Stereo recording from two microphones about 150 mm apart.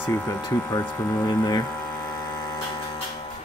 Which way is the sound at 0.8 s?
20° left (ahead or behind).